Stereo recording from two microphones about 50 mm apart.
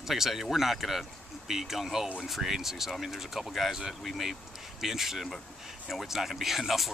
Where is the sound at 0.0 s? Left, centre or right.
Centre.